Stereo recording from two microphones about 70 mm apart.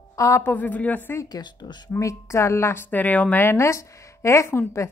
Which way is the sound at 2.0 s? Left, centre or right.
Left.